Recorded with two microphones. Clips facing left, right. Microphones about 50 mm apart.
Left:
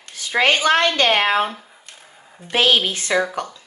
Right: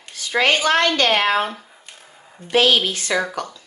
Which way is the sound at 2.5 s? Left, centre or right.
Left.